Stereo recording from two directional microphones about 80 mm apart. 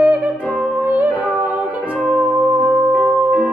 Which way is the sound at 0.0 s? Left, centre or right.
Centre.